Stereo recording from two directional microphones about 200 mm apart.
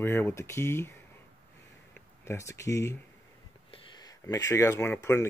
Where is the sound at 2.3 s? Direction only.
15° left (ahead or behind).